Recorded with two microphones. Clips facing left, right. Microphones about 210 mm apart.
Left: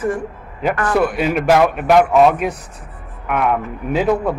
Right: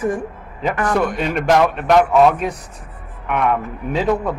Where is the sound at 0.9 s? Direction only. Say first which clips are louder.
Left 3 dB; 5° left (ahead or behind).